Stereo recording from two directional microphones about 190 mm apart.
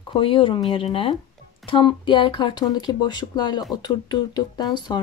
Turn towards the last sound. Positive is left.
turn(degrees=20)  # may be behind; listen again after turning